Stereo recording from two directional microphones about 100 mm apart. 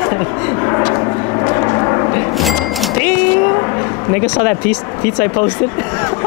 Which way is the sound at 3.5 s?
30° left (ahead or behind).